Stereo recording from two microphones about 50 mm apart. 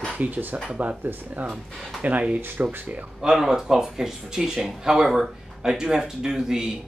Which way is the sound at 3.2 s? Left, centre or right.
Centre.